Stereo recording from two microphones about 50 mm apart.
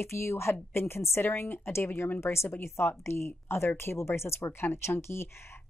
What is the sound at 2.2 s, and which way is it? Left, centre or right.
A woman's voice, left.